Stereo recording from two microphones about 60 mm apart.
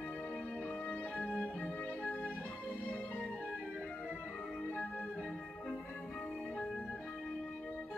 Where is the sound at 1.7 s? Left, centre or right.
Left.